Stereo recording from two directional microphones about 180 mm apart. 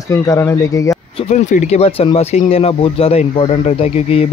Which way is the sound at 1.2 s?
40° left (ahead or behind).